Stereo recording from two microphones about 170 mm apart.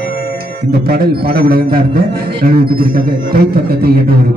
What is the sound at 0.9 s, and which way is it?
Speech, 60° right (ahead or behind).